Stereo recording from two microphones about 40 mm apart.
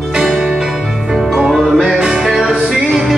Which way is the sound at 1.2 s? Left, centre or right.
Centre.